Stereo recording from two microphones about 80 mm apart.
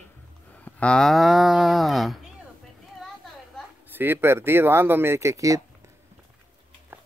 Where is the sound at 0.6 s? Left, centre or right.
Centre.